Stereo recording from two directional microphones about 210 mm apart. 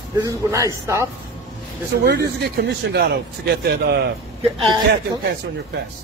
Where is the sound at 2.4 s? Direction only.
50° right (ahead or behind).